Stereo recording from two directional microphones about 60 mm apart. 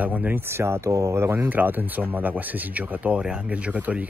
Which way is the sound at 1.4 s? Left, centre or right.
Right.